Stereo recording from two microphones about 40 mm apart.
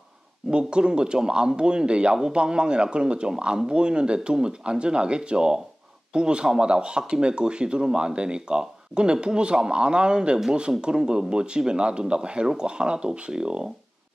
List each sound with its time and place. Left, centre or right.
0.5 s speech: right